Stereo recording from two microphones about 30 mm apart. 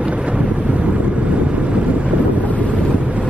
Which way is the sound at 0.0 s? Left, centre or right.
Right.